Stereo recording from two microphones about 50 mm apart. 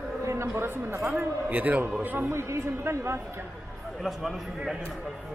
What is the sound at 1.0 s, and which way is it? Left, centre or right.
Speech, right.